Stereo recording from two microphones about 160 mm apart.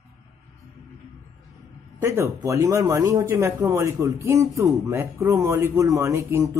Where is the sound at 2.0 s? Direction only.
15° right (ahead or behind).